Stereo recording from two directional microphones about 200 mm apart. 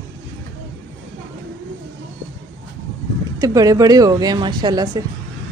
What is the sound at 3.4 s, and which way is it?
A woman's voice, 20° right (ahead or behind).